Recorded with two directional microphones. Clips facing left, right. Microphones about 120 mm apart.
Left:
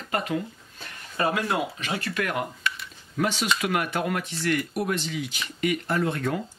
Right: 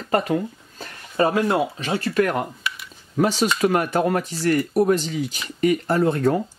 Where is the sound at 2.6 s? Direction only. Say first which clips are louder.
Even; 10° right (ahead or behind).